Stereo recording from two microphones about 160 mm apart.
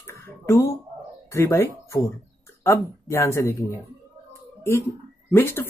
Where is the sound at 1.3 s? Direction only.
15° left (ahead or behind).